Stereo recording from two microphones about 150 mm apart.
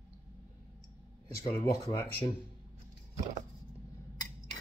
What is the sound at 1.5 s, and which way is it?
Speech, 20° left (ahead or behind).